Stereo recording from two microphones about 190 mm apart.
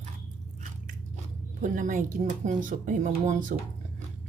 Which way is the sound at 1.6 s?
45° right (ahead or behind).